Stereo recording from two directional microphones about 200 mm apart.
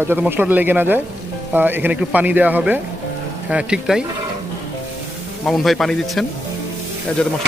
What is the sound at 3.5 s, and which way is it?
Stir, 5° right (ahead or behind).